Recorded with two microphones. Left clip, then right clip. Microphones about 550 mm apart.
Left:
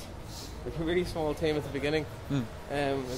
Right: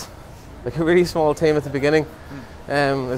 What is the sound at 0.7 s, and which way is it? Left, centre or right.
Speech, right.